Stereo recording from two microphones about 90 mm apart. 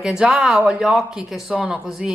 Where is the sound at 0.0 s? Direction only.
10° right (ahead or behind).